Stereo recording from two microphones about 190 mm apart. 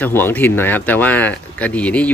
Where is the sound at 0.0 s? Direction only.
10° left (ahead or behind).